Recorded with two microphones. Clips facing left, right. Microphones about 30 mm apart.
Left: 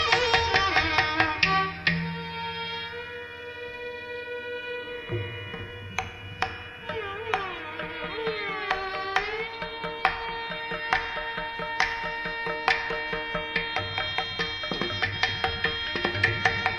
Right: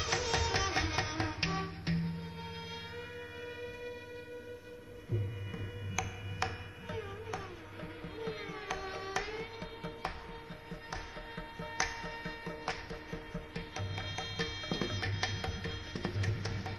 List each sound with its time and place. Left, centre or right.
0.0 s music: left
6.9 s music: left
10.7 s music: left
11.7 s music: left